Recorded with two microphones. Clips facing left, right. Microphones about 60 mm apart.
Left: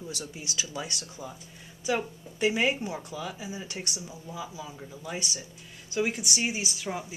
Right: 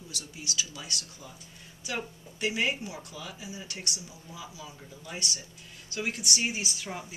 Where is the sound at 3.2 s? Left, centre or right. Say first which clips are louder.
Left 6 dB; centre.